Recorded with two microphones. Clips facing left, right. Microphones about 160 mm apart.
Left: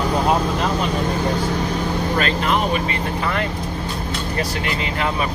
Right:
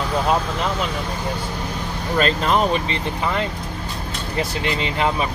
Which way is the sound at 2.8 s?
20° right (ahead or behind).